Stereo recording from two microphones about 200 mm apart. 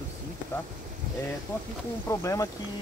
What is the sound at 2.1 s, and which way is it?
Speech, 15° left (ahead or behind).